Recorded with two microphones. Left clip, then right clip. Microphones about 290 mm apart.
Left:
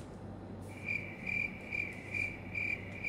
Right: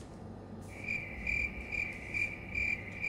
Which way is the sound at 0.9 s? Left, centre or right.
Centre.